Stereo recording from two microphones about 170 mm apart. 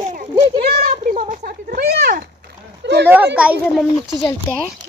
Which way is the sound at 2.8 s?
90° right.